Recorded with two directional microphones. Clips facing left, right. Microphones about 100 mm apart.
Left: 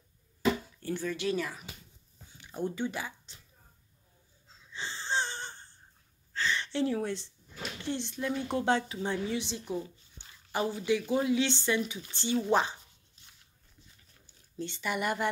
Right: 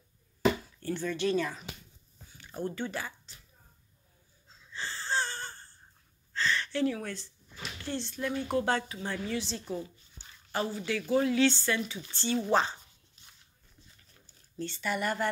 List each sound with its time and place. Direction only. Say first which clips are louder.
0.8 s speech: right 2 dB; 10° left (ahead or behind)
4.7 s wheeze: even; 20° left (ahead or behind)
6.3 s a sound: right 1 dB; 15° left (ahead or behind)
7.8 s a woman's voice: even; 20° left (ahead or behind)
14.2 s speech: right 1 dB; 15° left (ahead or behind)